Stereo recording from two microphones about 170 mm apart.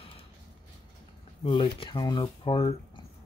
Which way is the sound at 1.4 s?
30° left (ahead or behind).